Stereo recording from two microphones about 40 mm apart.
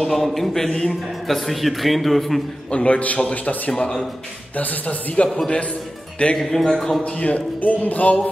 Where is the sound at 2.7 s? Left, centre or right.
Left.